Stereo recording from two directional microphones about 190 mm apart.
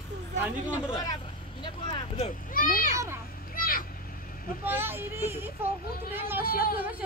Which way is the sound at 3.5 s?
50° left (ahead or behind).